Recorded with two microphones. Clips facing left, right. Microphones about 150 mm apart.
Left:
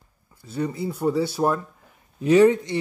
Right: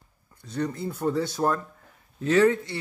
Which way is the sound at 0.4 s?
5° left (ahead or behind).